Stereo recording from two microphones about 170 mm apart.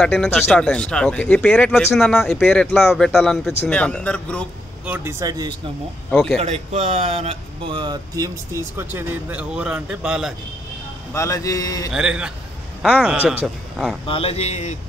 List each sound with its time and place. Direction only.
0.0 s speech: centre (ahead or behind)
4.8 s speech: 10° right (ahead or behind)
6.0 s speech: centre (ahead or behind)
6.3 s speech: 40° right (ahead or behind); by 10.3 s 5° right (ahead or behind)
11.1 s a man's voice: 20° left (ahead or behind)
11.9 s speech: 5° right (ahead or behind)
14.0 s a man's voice: 35° left (ahead or behind)